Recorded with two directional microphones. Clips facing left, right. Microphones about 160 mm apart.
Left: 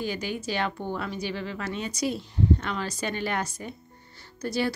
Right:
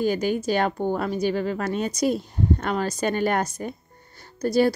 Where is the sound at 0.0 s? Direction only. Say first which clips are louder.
Right 8 dB; 45° right (ahead or behind).